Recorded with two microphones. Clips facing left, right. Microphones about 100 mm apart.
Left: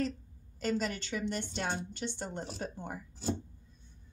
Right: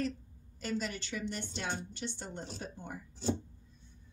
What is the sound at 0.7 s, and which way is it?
A woman's voice, 50° left (ahead or behind).